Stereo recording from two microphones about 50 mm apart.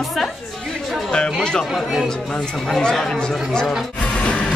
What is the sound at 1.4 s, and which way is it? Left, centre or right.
Speech, centre.